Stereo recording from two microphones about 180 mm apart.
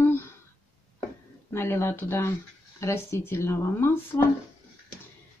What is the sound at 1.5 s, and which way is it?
Speech, 15° left (ahead or behind).